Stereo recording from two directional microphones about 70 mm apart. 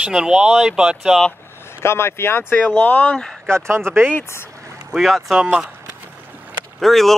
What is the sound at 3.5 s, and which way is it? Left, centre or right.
Speech, right.